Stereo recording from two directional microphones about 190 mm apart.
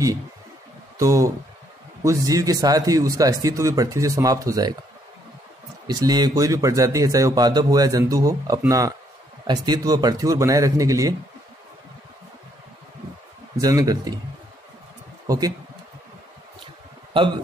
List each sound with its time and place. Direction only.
0.9 s speech: 15° right (ahead or behind)
5.9 s a man's voice: 20° right (ahead or behind)
13.6 s a man's voice: 20° right (ahead or behind)
15.2 s speech: 20° right (ahead or behind)